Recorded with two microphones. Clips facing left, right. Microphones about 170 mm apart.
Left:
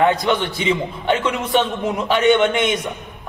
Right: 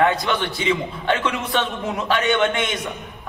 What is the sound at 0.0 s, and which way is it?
A man's voice, 20° left (ahead or behind).